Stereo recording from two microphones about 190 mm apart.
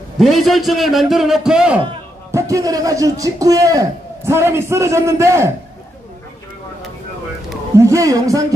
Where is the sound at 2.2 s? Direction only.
15° right (ahead or behind).